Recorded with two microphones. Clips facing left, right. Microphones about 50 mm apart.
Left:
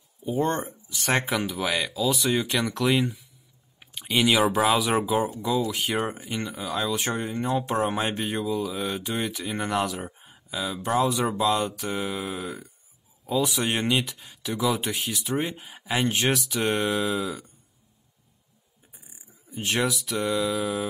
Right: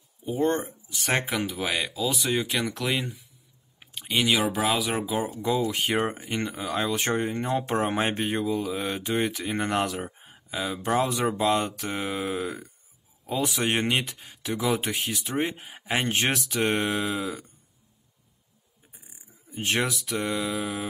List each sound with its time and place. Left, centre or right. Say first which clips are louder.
0.2 s speech: even; centre
1.7 s speech: left 4 dB; centre
5.6 s speech: right 1 dB; right
10.0 s a sound: even; right
10.5 s speech: even; right
11.4 s speech: even; right
13.3 s speech: left 1 dB; right
16.1 s speech: left 1 dB; right
19.5 s speech: left 1 dB; right